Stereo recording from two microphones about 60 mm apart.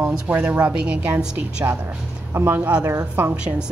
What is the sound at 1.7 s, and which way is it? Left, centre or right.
Speech, right.